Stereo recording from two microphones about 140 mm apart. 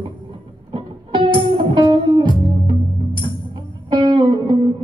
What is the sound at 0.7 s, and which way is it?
Music, 35° right (ahead or behind).